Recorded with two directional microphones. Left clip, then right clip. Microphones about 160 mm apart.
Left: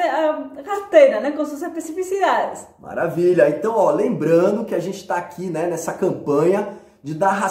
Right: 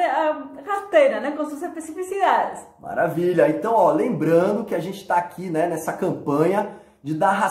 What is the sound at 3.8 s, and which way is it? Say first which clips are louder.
Speech: left 3 dB; 15° right (ahead or behind).